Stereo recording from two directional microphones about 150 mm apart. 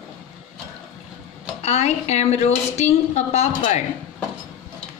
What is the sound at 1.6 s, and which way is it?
A woman's voice, 45° left (ahead or behind).